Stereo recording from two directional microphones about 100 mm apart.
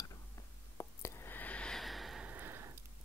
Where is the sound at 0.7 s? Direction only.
30° left (ahead or behind); by 2.2 s centre (ahead or behind).